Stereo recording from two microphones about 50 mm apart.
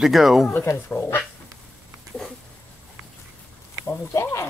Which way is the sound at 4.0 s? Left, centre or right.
Left.